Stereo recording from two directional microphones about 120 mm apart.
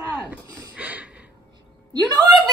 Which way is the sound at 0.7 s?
10° right (ahead or behind).